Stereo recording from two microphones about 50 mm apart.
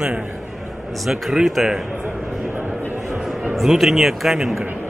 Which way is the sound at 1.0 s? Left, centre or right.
Centre.